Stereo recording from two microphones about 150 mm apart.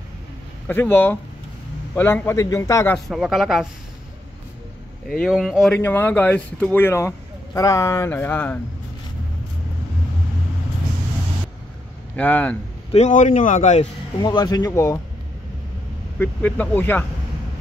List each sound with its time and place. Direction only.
0.7 s speech: 15° left (ahead or behind)
3.1 s speech: centre (ahead or behind)
5.0 s speech: 5° left (ahead or behind)
5.8 s speech: 10° left (ahead or behind)
12.2 s speech: 10° left (ahead or behind)
12.9 s speech: 50° left (ahead or behind)
14.2 s speech: 25° left (ahead or behind)
16.2 s speech: 10° left (ahead or behind)